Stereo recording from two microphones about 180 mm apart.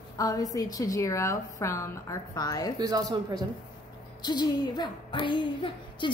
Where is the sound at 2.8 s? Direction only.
20° right (ahead or behind).